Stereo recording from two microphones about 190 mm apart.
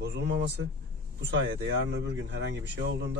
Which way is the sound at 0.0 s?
65° right (ahead or behind).